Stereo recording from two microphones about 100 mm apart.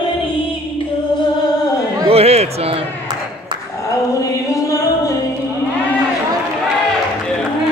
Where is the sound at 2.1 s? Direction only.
90° right.